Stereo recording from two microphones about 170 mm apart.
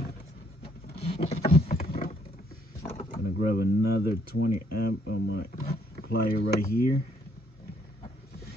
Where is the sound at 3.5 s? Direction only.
65° left (ahead or behind).